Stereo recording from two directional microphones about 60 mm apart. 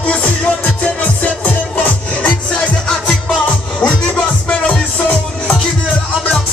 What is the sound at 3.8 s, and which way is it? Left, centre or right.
Music, centre.